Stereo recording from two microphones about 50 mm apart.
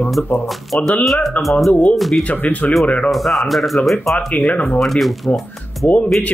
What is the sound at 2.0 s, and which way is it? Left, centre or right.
Speech, centre.